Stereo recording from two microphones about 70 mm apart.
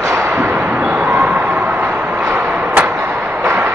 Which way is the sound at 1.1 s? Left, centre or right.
Right.